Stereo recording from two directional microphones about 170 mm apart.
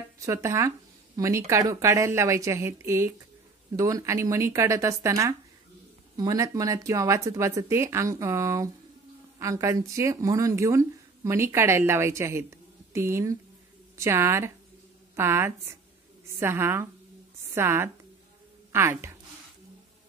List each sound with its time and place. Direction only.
0.2 s a woman's voice: 20° right (ahead or behind)